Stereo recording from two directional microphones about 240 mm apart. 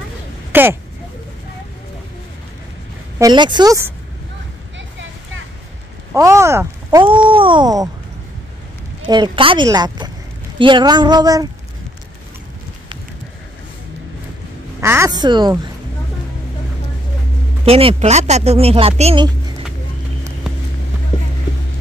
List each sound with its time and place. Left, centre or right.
0.5 s speech: centre
3.2 s speech: centre
6.1 s speech: centre
9.0 s speech: centre
14.8 s speech: centre
17.6 s speech: right